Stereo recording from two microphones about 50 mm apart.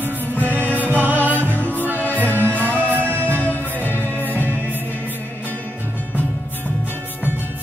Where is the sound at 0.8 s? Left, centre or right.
Right.